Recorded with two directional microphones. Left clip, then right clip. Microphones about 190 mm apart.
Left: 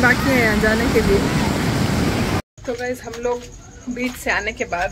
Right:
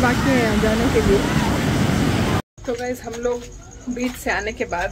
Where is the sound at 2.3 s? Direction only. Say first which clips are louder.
Even; centre (ahead or behind).